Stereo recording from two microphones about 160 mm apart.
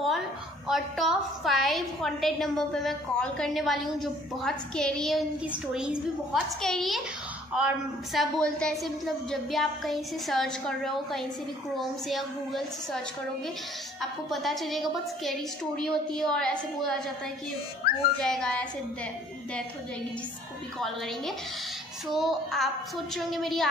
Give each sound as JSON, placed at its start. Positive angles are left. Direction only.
{"t": 0.7, "sound": "a woman's voice", "side_deg": 0}
{"t": 14.3, "sound": "a woman's voice", "side_deg": 0}
{"t": 17.8, "sound": "speech", "side_deg": 70}
{"t": 18.2, "sound": "a woman's voice", "side_deg": 5}
{"t": 22.1, "sound": "a woman's voice", "side_deg": 0}